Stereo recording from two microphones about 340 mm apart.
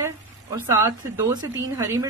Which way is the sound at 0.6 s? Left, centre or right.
Centre.